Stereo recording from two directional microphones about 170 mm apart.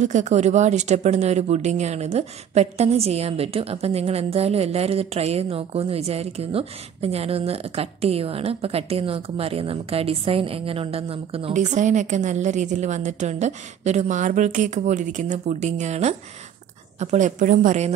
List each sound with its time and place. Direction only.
0.0 s speech: 45° right (ahead or behind)
11.5 s a woman's voice: 45° right (ahead or behind)